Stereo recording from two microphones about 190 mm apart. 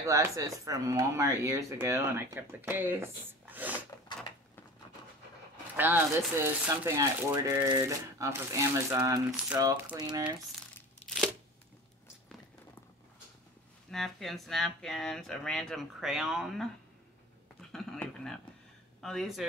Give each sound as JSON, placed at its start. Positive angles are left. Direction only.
{"t": 0.0, "sound": "speech", "side_deg": -15}
{"t": 5.8, "sound": "speech", "side_deg": -10}
{"t": 13.8, "sound": "speech", "side_deg": 0}
{"t": 17.6, "sound": "a sound", "side_deg": 0}
{"t": 18.9, "sound": "speech", "side_deg": 0}